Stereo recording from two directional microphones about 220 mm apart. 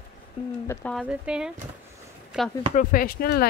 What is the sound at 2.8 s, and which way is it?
Speech, 40° left (ahead or behind).